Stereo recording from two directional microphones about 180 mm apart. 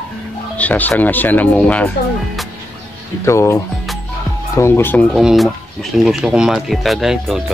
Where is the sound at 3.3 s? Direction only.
15° left (ahead or behind).